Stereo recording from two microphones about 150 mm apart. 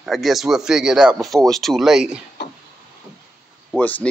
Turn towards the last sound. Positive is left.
turn(degrees=10)  # may be behind; listen again after turning